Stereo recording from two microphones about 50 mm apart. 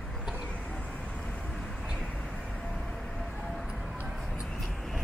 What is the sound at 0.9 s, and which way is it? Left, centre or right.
Vehicle, left.